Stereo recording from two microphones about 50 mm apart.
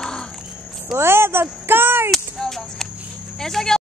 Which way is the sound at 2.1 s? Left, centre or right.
Centre.